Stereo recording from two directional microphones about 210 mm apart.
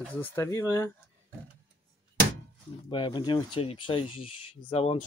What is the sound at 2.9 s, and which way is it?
Speech, 25° left (ahead or behind).